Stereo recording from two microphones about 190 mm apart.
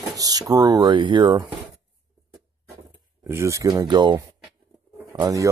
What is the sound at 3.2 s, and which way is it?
Speech, 15° right (ahead or behind).